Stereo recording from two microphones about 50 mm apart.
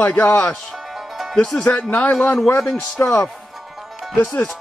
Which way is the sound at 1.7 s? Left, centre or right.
Left.